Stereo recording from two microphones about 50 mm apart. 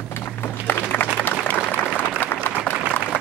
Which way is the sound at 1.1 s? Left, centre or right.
Left.